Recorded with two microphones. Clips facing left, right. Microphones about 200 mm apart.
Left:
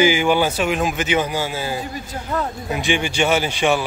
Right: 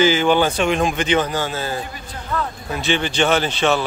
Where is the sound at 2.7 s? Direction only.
15° left (ahead or behind).